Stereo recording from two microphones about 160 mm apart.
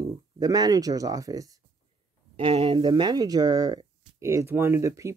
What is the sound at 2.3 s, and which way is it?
Speech, 35° right (ahead or behind).